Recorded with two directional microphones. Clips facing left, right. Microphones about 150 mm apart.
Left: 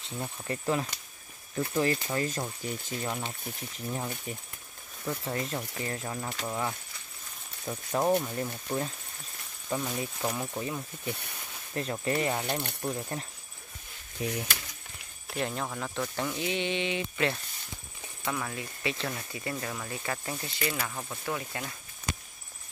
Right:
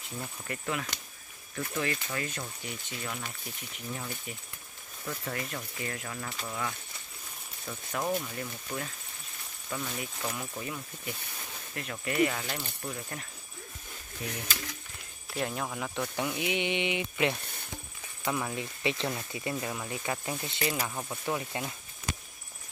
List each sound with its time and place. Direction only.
0.0 s speech: 30° left (ahead or behind)
15.3 s speech: centre (ahead or behind); by 21.7 s 20° right (ahead or behind)